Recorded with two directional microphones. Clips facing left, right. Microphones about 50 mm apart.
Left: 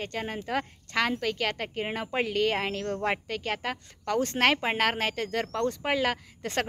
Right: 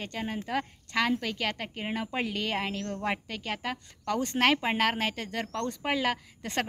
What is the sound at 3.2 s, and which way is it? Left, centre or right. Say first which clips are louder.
Speech: left 3 dB; left.